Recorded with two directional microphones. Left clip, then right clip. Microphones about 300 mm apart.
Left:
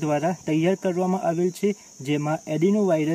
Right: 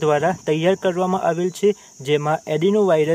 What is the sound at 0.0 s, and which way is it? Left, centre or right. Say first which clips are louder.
Speech: right 6 dB; right.